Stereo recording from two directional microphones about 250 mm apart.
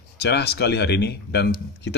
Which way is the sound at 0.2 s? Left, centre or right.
Left.